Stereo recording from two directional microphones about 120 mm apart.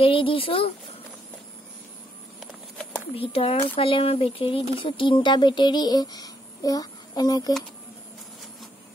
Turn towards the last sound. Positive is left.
turn(degrees=35)  # may be behind; listen again after turning